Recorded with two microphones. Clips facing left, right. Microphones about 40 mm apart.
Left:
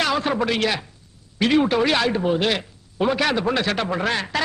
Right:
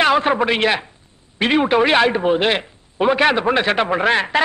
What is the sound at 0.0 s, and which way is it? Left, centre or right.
A man's voice, right.